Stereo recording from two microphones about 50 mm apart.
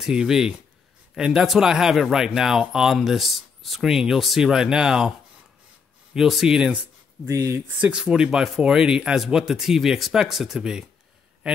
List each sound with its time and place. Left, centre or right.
0.0 s speech: centre
3.9 s speech: centre
6.1 s speech: centre
7.2 s speech: right
8.1 s speech: centre